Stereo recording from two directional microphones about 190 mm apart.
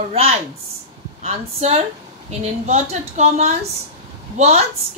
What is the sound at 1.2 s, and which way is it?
A woman's voice, 35° right (ahead or behind).